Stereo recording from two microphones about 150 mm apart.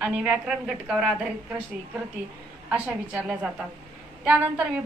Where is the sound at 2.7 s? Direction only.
10° right (ahead or behind).